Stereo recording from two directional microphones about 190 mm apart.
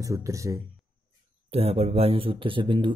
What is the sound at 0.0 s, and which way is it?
Speech, 15° right (ahead or behind).